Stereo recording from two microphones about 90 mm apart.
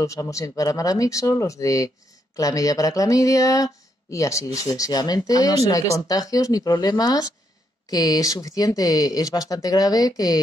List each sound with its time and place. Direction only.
0.0 s speech: 35° left (ahead or behind)